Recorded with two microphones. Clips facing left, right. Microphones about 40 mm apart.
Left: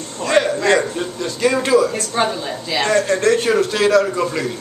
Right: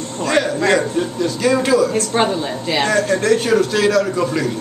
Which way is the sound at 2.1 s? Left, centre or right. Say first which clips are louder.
Right 2 dB; right.